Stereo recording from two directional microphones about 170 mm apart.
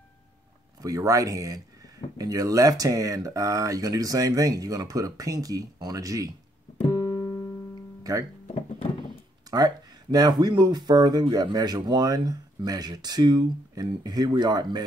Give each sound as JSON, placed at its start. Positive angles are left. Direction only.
{"t": 0.8, "sound": "speech", "side_deg": -20}
{"t": 6.9, "sound": "keyboard", "side_deg": 20}
{"t": 8.0, "sound": "guitar", "side_deg": -20}
{"t": 10.1, "sound": "speech", "side_deg": -25}